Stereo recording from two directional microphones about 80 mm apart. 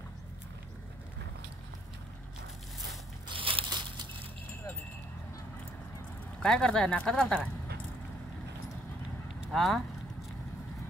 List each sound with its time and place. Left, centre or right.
3.3 s a sound: right
6.4 s speech: centre
9.5 s speech: centre